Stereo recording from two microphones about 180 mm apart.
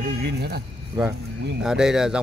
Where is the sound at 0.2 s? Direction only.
65° right (ahead or behind).